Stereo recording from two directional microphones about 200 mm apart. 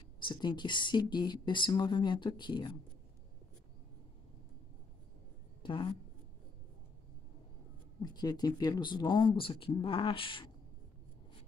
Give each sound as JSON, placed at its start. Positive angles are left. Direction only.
{"t": 0.2, "sound": "speech", "side_deg": 20}
{"t": 5.6, "sound": "a sound", "side_deg": 25}
{"t": 8.0, "sound": "speech", "side_deg": 20}